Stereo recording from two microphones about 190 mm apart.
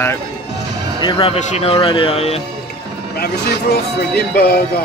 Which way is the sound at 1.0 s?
30° left (ahead or behind).